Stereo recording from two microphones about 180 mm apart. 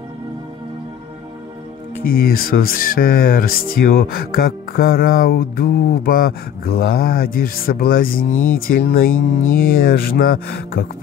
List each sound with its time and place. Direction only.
2.0 s speech: 55° left (ahead or behind)